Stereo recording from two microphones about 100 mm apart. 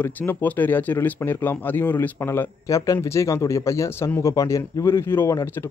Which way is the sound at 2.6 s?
35° left (ahead or behind).